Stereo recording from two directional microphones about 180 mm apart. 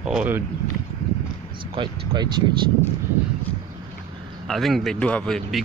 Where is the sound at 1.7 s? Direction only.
25° right (ahead or behind).